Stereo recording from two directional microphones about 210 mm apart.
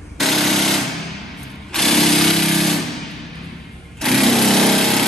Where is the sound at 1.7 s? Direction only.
Centre (ahead or behind).